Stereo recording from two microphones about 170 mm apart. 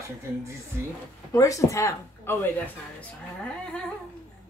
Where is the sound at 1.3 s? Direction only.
20° left (ahead or behind).